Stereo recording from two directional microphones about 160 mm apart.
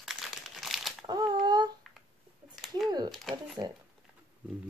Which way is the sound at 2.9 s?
25° right (ahead or behind).